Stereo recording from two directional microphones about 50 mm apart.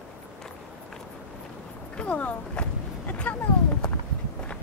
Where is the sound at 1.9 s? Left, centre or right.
Left.